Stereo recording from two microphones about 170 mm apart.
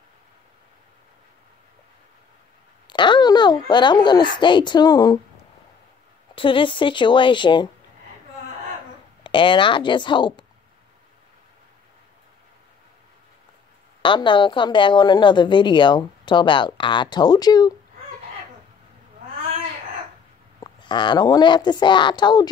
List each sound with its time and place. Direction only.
2.9 s a woman's voice: 25° left (ahead or behind)
6.3 s a woman's voice: 30° left (ahead or behind)
9.2 s a woman's voice: 30° left (ahead or behind)
14.0 s a woman's voice: 30° left (ahead or behind)
20.6 s a woman's voice: 25° left (ahead or behind)